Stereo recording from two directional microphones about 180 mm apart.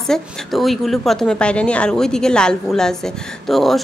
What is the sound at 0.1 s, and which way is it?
A woman's voice, centre (ahead or behind).